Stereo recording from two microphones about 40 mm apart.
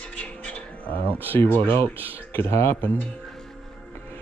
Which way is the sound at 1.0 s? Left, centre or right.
Right.